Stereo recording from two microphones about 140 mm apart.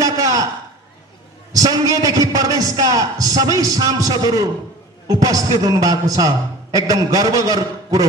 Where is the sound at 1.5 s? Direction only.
25° right (ahead or behind).